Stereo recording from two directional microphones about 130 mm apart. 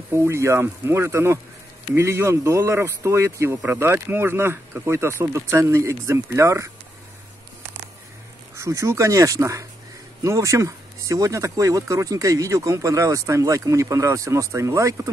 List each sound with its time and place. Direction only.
0.1 s speech: 20° right (ahead or behind)
8.5 s speech: 25° right (ahead or behind)